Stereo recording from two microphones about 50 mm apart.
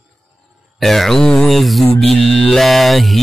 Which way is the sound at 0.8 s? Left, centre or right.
Centre.